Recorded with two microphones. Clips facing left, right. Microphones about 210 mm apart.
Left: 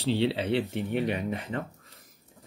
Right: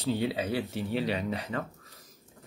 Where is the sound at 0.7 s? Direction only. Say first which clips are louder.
Left 2 dB; 15° left (ahead or behind).